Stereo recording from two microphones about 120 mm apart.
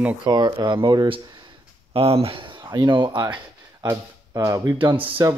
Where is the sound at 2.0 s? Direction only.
55° right (ahead or behind).